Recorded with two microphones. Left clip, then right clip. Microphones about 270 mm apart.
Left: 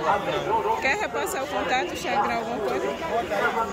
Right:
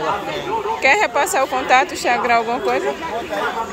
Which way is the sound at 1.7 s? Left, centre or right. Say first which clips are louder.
Right 12 dB; right.